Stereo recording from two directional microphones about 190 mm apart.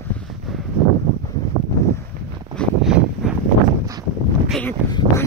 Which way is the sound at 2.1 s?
50° right (ahead or behind).